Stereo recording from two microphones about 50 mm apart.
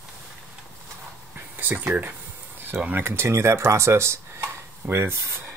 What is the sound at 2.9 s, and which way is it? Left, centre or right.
Speech, right.